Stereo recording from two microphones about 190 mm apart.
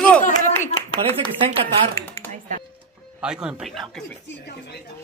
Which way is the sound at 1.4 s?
30° right (ahead or behind).